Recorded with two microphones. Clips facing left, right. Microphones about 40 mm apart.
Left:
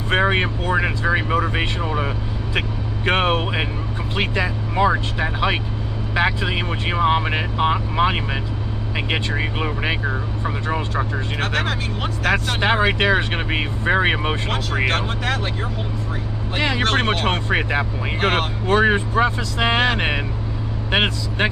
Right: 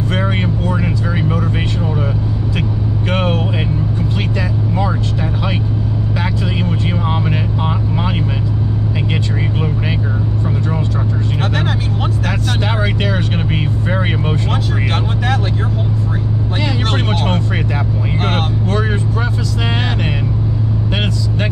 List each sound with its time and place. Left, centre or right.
0.1 s speech: left
3.1 s speech: left
11.3 s speech: centre
12.6 s speech: left
17.0 s speech: centre
17.3 s speech: left